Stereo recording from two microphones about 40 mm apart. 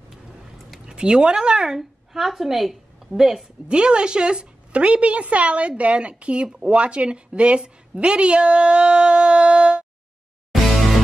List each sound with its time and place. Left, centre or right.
0.8 s speech: right
1.7 s a woman's voice: centre
3.6 s a woman's voice: right
10.5 s music: centre